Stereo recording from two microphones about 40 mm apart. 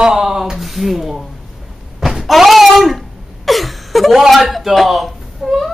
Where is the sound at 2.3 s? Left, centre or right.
Centre.